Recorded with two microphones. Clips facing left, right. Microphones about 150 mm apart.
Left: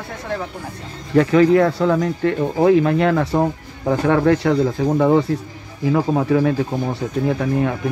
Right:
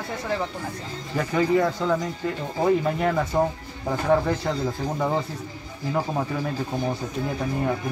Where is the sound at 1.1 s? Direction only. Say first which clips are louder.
Left 9 dB; 75° left (ahead or behind).